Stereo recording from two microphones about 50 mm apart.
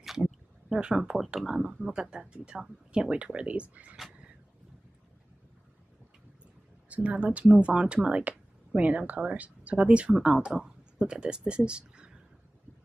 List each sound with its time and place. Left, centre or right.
0.7 s speech: centre
6.9 s speech: right
7.4 s speech: centre